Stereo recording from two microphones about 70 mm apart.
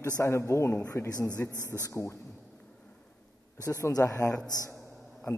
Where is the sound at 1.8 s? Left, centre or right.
Left.